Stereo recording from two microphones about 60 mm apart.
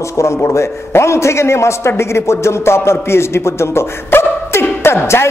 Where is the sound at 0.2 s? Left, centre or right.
Left.